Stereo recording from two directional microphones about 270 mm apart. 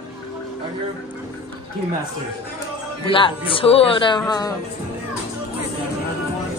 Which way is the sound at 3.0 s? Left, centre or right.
Centre.